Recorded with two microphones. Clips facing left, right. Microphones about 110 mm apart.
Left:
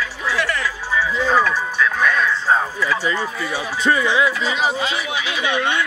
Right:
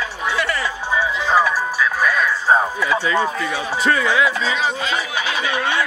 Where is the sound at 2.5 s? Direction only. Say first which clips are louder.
Right 2 dB; 20° right (ahead or behind).